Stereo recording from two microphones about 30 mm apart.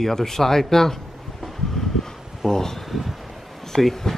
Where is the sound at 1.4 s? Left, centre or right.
Centre.